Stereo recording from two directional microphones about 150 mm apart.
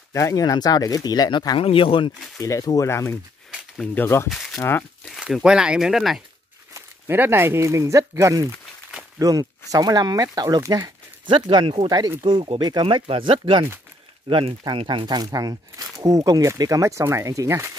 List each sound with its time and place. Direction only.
0.1 s speech: 20° left (ahead or behind)
1.6 s speech: 40° left (ahead or behind)
2.4 s speech: 25° left (ahead or behind)
3.5 s speech: 5° left (ahead or behind)
4.3 s a sound: centre (ahead or behind)
4.6 s speech: 15° left (ahead or behind)
5.0 s speech: centre (ahead or behind)
6.7 s speech: 15° right (ahead or behind)